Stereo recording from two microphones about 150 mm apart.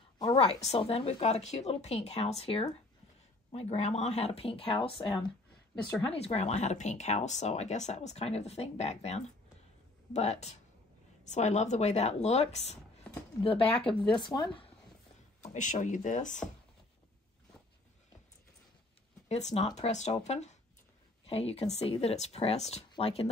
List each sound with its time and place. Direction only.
0.4 s speech: 45° left (ahead or behind)
15.4 s speech: 55° left (ahead or behind)
19.2 s speech: 50° left (ahead or behind)